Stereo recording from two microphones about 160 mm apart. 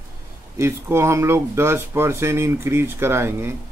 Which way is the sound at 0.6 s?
15° right (ahead or behind).